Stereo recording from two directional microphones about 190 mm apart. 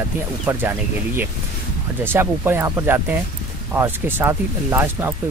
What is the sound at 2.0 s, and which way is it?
Speech, 10° right (ahead or behind).